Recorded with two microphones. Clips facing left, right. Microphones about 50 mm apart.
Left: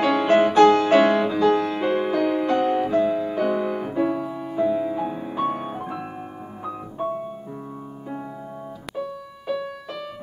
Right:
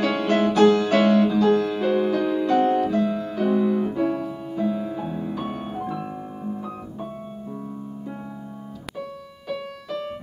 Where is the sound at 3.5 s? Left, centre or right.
Left.